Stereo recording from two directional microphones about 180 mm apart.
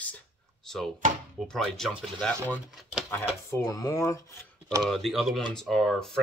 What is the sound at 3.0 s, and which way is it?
Speech, 15° left (ahead or behind).